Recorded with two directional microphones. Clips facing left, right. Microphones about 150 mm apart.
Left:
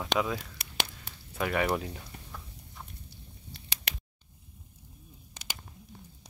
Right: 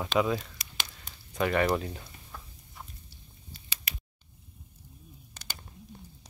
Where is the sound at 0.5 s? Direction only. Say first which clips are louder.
Left 5 dB; 65° left (ahead or behind).